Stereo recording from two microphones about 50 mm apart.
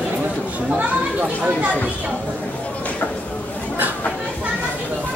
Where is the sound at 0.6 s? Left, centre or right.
Right.